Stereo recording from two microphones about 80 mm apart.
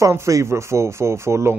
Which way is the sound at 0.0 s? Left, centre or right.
Right.